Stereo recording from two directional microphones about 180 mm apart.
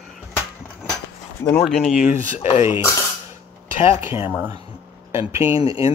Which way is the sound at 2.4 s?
35° left (ahead or behind).